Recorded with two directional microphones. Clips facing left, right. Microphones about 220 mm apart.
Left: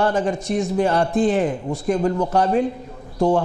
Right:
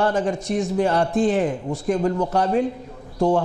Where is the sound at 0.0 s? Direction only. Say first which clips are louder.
Left 1 dB; 10° left (ahead or behind).